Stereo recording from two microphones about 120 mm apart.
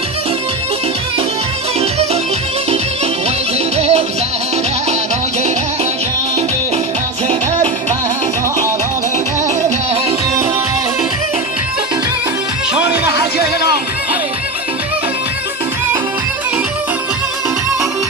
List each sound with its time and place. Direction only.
3.7 s music: 60° right (ahead or behind)